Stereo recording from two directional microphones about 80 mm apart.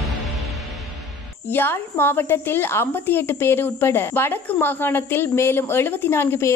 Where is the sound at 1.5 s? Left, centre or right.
Left.